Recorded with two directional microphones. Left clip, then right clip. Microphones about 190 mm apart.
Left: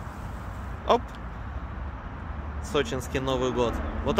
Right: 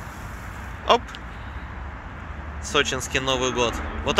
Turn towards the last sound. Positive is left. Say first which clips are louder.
# right 3 dB
turn(degrees=10)  # may be behind; listen again after turning